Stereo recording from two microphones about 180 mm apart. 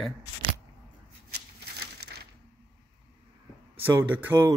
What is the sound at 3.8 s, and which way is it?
Speech, 10° right (ahead or behind).